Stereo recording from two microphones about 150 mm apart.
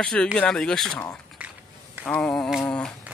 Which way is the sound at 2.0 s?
5° left (ahead or behind).